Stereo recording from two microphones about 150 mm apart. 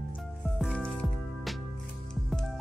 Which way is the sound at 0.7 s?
5° left (ahead or behind).